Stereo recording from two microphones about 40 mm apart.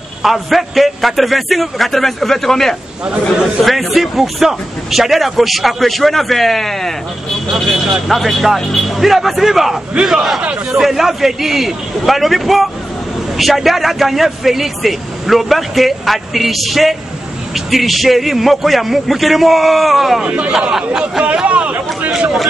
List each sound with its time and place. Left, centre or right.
0.2 s a man's voice: centre
3.6 s a man's voice: centre
20.2 s a man's voice: right
21.5 s chatter: right